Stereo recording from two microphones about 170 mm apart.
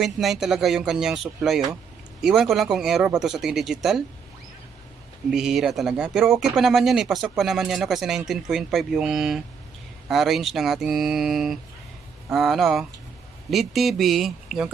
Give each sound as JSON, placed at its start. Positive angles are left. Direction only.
{"t": 0.0, "sound": "speech", "side_deg": 0}
{"t": 5.3, "sound": "speech", "side_deg": -5}